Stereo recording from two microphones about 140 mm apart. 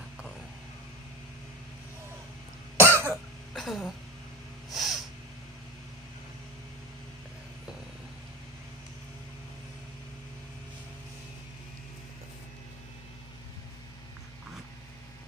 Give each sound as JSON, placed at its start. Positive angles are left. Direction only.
{"t": 2.8, "sound": "cough", "side_deg": -20}
{"t": 3.5, "sound": "a sound", "side_deg": 0}
{"t": 4.7, "sound": "snort", "side_deg": 0}